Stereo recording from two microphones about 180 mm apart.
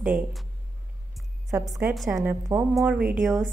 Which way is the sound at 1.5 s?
15° right (ahead or behind).